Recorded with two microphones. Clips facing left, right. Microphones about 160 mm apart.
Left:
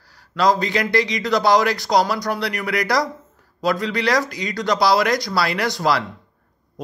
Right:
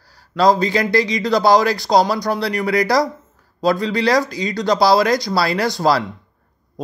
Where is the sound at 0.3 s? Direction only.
30° right (ahead or behind).